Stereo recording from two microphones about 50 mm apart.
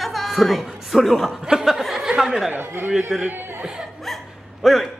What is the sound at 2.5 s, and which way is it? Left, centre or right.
Speech, right.